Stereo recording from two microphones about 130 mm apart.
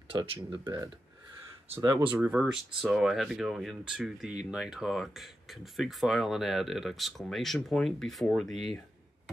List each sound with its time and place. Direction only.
0.1 s speech: 40° right (ahead or behind)
1.8 s speech: 30° right (ahead or behind)
2.0 s speech: 10° right (ahead or behind)